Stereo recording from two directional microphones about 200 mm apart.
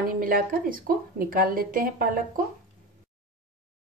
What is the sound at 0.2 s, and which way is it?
Speech, 45° right (ahead or behind).